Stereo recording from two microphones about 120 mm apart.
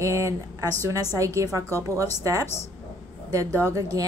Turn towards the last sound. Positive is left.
turn(degrees=-30)  # may be behind; listen again after turning